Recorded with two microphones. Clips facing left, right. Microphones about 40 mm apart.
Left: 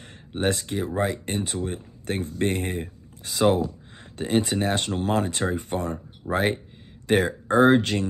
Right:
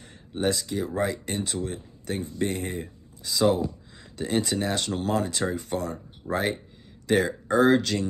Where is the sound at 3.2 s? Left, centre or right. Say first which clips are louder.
Left 2 dB; left.